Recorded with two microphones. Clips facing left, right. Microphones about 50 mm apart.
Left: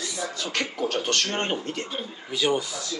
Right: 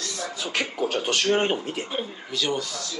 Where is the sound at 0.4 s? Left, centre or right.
Centre.